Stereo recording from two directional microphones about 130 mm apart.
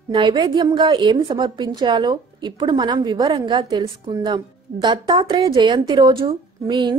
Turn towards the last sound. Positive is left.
turn(degrees=-35)  # may be behind; listen again after turning